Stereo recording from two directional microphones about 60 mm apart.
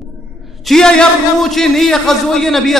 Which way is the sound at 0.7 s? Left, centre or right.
Centre.